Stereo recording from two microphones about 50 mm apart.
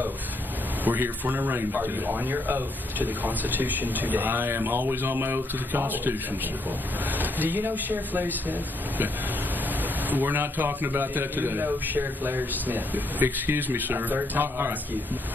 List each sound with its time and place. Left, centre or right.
0.8 s speech: right
4.5 s a man's voice: right
7.2 s a man's voice: right